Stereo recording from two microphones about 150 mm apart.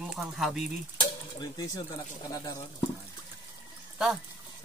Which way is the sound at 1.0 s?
30° left (ahead or behind).